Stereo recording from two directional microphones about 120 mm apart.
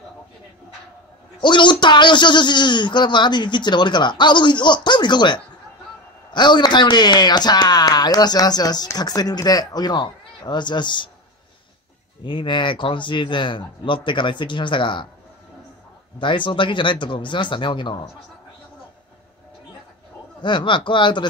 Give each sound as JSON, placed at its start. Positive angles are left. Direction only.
{"t": 1.4, "sound": "speech", "side_deg": 40}
{"t": 12.2, "sound": "speech", "side_deg": 40}
{"t": 16.2, "sound": "speech", "side_deg": 45}
{"t": 20.4, "sound": "speech", "side_deg": 40}